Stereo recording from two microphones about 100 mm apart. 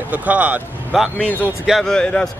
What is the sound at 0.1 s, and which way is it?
Speech, 15° right (ahead or behind).